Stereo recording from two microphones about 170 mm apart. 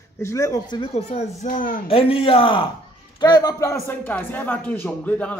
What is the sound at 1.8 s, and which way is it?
A man's voice, 35° left (ahead or behind).